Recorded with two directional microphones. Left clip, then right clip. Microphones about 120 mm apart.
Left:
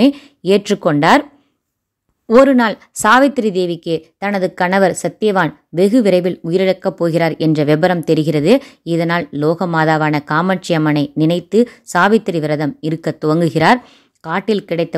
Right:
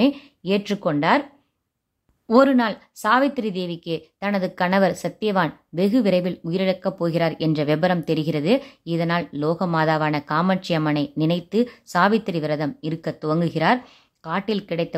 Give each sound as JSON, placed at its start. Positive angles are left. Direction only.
{"t": 0.0, "sound": "speech", "side_deg": 45}
{"t": 2.2, "sound": "speech", "side_deg": 25}
{"t": 2.5, "sound": "a woman's voice", "side_deg": 60}